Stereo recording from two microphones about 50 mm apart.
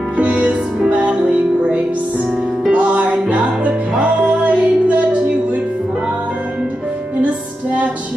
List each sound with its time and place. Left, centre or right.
0.2 s music: right